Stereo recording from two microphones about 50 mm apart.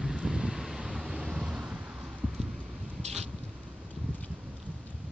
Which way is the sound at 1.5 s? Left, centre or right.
Right.